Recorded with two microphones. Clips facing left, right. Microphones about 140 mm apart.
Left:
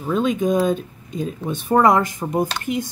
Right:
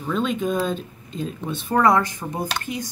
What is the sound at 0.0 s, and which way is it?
Speech, 15° left (ahead or behind).